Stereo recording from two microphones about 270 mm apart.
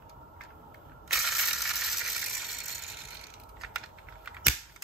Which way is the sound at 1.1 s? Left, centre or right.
Centre.